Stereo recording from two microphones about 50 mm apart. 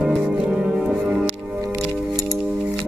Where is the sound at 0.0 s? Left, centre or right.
Right.